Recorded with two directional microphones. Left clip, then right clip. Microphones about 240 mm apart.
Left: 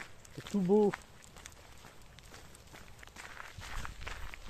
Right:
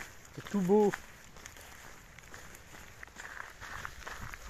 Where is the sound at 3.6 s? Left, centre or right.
Centre.